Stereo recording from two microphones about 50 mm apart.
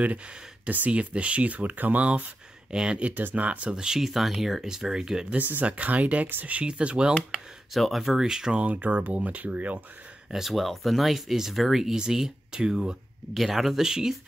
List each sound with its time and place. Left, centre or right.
0.7 s speech: right
2.7 s speech: centre
3.7 s speech: centre
5.4 s speech: right
5.7 s speech: right
7.7 s speech: centre
8.5 s speech: right
10.3 s speech: centre
13.3 s speech: centre